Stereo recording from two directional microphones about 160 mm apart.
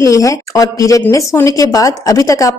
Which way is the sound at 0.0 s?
20° left (ahead or behind).